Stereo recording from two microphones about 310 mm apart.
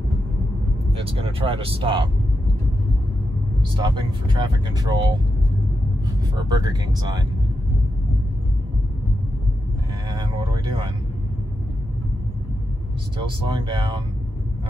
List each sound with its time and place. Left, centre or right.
0.9 s speech: centre
3.8 s speech: centre
6.0 s speech: centre
10.1 s vehicle: centre
13.2 s speech: centre